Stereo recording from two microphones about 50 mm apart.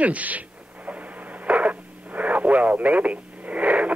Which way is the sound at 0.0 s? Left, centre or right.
Right.